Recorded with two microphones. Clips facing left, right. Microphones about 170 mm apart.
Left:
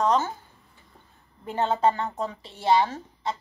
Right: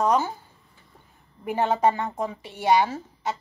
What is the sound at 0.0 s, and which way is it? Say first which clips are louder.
Speech: right 1 dB; 10° right (ahead or behind).